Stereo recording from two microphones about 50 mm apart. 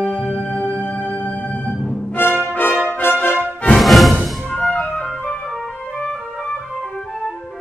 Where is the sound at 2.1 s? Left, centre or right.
Left.